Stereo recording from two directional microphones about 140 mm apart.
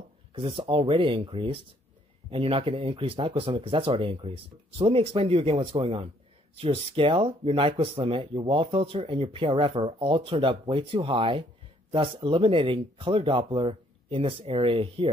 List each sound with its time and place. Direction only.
0.3 s speech: 40° right (ahead or behind)